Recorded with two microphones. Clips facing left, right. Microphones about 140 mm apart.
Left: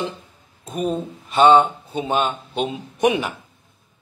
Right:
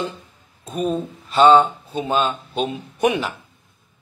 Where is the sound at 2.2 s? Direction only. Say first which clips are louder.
Right 1 dB; 10° left (ahead or behind).